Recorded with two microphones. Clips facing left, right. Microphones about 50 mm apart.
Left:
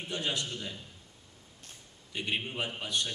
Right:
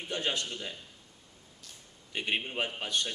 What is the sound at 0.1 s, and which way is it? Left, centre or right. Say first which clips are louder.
Speech: right 1 dB; right.